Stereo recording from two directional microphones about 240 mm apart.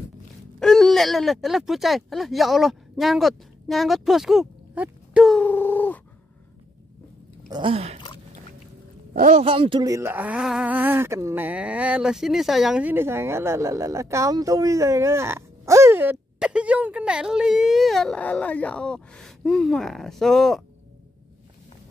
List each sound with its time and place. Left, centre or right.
0.6 s speech: centre
7.4 s speech: centre
9.1 s speech: right; by 20.6 s centre